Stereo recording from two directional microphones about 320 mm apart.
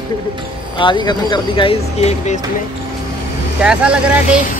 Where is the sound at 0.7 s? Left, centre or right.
Centre.